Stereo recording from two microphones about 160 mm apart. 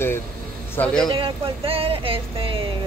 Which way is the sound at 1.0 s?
35° right (ahead or behind).